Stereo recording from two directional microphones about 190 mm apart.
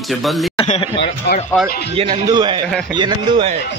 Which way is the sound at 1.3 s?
65° left (ahead or behind).